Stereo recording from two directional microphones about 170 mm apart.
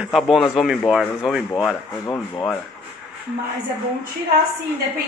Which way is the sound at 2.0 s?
20° left (ahead or behind).